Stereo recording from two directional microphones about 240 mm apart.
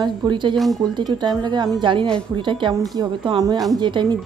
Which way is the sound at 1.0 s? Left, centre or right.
Centre.